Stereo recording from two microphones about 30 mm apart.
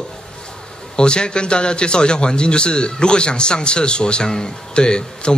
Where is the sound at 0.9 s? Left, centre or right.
Left.